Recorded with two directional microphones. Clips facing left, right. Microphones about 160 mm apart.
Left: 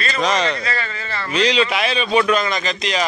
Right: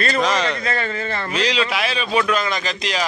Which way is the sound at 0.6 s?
50° right (ahead or behind).